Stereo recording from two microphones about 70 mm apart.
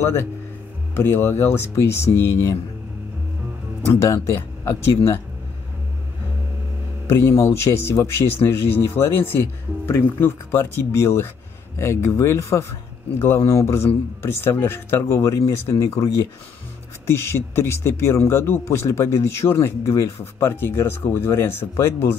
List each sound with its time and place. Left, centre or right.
0.9 s speech: left
4.0 s speech: left
7.1 s speech: left
17.0 s speech: left